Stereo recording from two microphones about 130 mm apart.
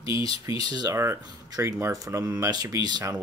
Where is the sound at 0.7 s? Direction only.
25° right (ahead or behind).